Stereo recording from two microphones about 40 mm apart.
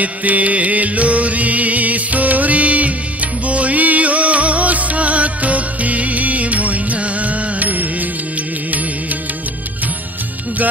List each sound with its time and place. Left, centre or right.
0.0 s music: right